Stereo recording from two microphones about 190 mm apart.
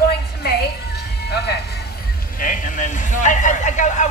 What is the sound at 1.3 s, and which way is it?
Speech, 60° left (ahead or behind).